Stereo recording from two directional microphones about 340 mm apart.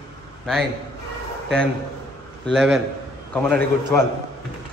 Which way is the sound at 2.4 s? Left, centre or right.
Centre.